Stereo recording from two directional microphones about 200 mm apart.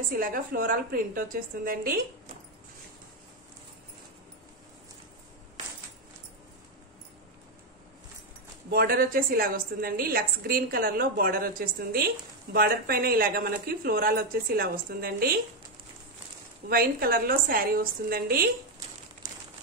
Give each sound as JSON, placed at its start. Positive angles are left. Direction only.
{"t": 0.2, "sound": "a woman's voice", "side_deg": -45}
{"t": 8.6, "sound": "a woman's voice", "side_deg": -50}
{"t": 16.6, "sound": "a woman's voice", "side_deg": -50}